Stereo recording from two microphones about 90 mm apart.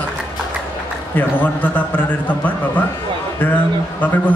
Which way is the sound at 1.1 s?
20° left (ahead or behind).